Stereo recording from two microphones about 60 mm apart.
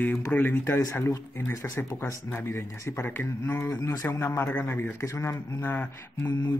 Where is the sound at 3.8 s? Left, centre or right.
Left.